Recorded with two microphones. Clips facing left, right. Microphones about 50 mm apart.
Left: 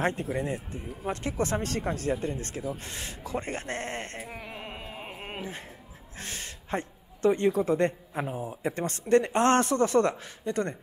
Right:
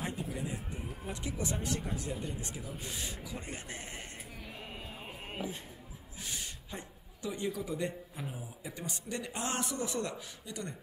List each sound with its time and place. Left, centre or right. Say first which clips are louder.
0.0 s speech: left 9 dB; left
1.0 s a man's voice: left 9 dB; left
4.3 s music: left 7 dB; left
4.7 s carnatic music: left 5 dB; left
6.1 s a man's voice: left 4 dB; left